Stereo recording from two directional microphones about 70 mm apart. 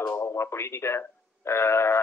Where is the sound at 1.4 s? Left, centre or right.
Left.